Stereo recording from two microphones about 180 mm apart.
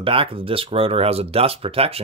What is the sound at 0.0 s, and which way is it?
Speech, 30° right (ahead or behind).